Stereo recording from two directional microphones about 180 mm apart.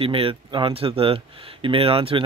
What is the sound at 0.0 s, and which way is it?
Speech, 30° right (ahead or behind).